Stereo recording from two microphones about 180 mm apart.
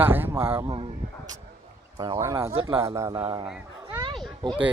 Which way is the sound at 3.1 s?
30° right (ahead or behind).